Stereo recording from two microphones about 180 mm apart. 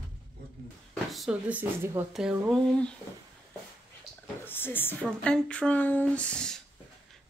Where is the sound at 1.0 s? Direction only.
Centre (ahead or behind).